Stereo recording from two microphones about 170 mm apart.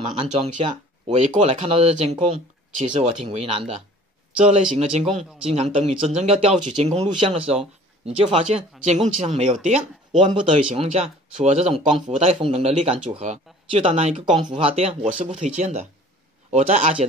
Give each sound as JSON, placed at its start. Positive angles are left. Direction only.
{"t": 0.0, "sound": "speech", "side_deg": -30}
{"t": 1.0, "sound": "a man's voice", "side_deg": -40}